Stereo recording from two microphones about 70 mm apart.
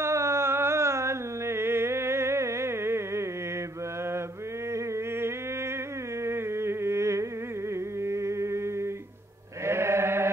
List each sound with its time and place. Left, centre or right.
0.0 s music: right
4.7 s a sound: right
9.7 s chant: right